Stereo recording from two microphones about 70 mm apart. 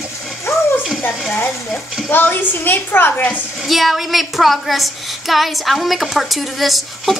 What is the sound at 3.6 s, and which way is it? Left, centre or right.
A woman's voice, centre.